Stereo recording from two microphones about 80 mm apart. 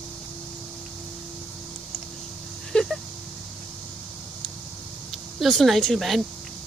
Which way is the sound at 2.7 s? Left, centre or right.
Centre.